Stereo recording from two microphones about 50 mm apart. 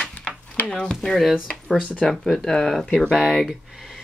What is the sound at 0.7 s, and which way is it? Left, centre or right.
Speech, centre.